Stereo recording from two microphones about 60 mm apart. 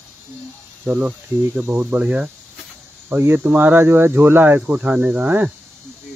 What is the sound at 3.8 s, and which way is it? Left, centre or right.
Speech, right.